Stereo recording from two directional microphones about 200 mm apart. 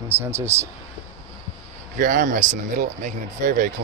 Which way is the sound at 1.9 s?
40° right (ahead or behind).